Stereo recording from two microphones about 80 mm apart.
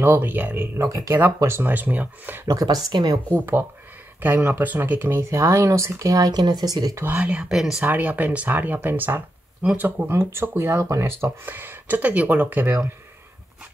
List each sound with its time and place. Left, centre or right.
0.0 s speech: right
0.7 s speech: right
1.1 s speech: right
2.4 s speech: right
3.3 s speech: right
5.3 s speech: right
7.0 s speech: right
7.8 s speech: right